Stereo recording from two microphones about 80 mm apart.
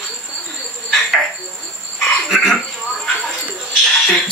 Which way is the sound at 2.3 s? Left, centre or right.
Centre.